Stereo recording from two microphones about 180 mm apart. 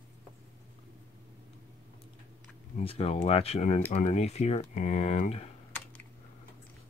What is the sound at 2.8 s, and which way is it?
Speech, 35° left (ahead or behind).